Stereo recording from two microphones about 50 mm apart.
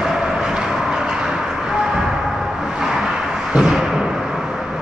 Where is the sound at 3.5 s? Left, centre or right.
Centre.